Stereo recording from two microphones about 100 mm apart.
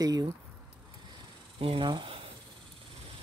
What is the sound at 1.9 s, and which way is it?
Speech, 55° right (ahead or behind).